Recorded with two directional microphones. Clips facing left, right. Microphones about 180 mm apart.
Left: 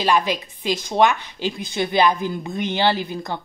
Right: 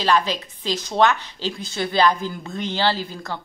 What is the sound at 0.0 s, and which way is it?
A woman's voice, 15° left (ahead or behind).